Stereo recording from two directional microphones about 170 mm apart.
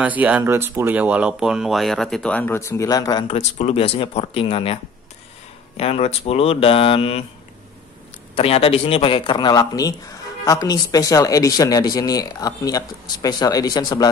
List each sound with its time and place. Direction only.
0.0 s speech: 10° right (ahead or behind); by 3.3 s 25° left (ahead or behind)
3.3 s speech: 40° left (ahead or behind)
5.8 s speech: 35° left (ahead or behind)
8.4 s speech: 35° left (ahead or behind)